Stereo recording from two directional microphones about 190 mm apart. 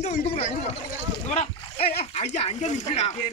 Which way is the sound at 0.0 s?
35° left (ahead or behind).